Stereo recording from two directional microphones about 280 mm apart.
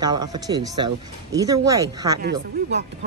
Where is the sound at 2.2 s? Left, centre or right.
Right.